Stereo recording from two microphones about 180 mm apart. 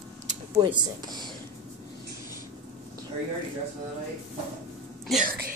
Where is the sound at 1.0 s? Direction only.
20° right (ahead or behind).